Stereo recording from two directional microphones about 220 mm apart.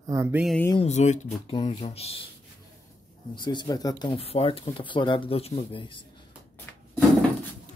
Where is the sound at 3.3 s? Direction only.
20° left (ahead or behind).